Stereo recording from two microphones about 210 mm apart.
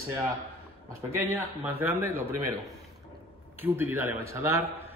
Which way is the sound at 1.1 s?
10° right (ahead or behind).